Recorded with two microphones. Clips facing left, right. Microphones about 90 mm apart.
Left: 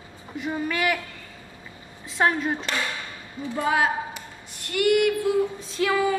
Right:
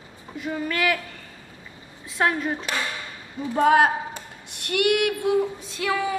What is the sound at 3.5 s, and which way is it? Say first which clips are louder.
Speech: right 6 dB; 60° right (ahead or behind).